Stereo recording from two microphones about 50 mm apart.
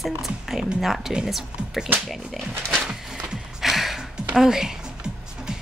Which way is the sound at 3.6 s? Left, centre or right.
Centre.